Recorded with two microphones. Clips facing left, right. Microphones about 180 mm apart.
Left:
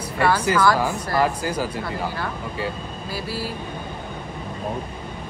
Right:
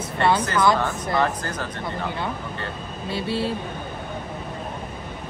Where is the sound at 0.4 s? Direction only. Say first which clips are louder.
Left 1 dB; 10° left (ahead or behind).